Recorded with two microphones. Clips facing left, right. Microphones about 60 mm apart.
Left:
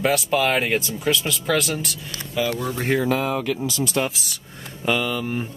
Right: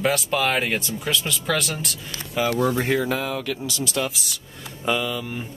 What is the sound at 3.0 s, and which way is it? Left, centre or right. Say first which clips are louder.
Speech: left 3 dB; left.